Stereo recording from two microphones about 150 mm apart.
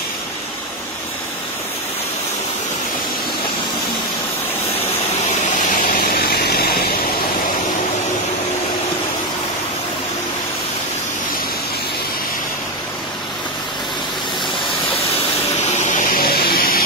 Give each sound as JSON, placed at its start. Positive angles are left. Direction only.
{"t": 5.8, "sound": "vehicle", "side_deg": 85}
{"t": 15.8, "sound": "vacuum cleaner", "side_deg": 55}